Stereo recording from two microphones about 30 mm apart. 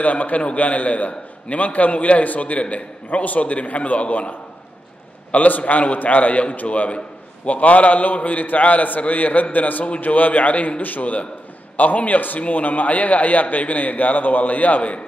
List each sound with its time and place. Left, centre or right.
0.0 s a man's voice: left
12.4 s a man's voice: left